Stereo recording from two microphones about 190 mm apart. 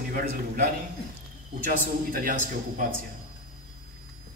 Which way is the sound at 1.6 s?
50° right (ahead or behind).